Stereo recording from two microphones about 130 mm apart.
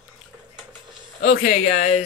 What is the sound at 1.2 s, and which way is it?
Speech, 85° left.